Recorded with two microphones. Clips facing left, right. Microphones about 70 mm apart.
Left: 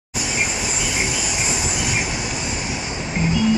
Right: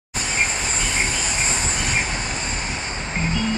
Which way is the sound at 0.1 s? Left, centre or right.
Right.